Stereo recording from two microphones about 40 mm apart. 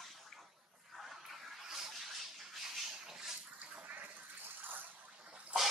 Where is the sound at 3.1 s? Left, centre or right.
Centre.